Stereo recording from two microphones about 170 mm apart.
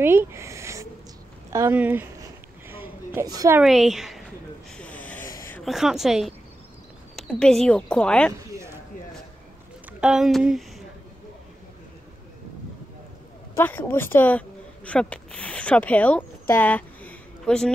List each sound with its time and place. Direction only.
0.0 s speech: 15° right (ahead or behind)
3.2 s a woman's voice: 20° right (ahead or behind)
3.5 s a woman's voice: centre (ahead or behind)
4.7 s a sound: 10° left (ahead or behind)
5.6 s a woman's voice: centre (ahead or behind)
9.9 s a woman's voice: 5° right (ahead or behind)
13.6 s speech: 10° left (ahead or behind)